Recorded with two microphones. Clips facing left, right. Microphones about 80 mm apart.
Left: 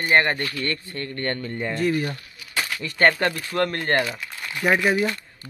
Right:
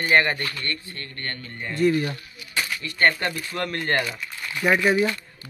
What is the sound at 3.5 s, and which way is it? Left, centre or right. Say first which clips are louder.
Speech: left 2 dB; left.